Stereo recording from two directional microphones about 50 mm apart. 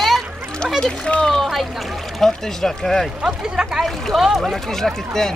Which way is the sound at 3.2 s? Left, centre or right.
Centre.